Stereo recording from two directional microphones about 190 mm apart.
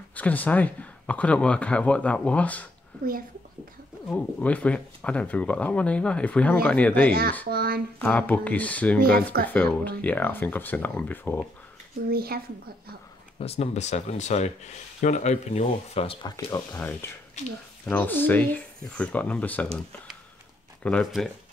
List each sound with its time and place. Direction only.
0.1 s speech: 10° left (ahead or behind)
4.1 s speech: 5° left (ahead or behind)
7.4 s a sound: 55° right (ahead or behind)
8.0 s speech: 5° left (ahead or behind)
9.0 s speech: 55° right (ahead or behind)
9.5 s speech: 10° left (ahead or behind)
12.1 s speech: 55° right (ahead or behind)
13.4 s speech: 35° left (ahead or behind); by 21.3 s centre (ahead or behind)